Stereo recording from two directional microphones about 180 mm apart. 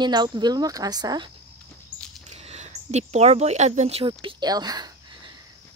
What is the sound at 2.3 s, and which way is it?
A woman's voice, 40° right (ahead or behind).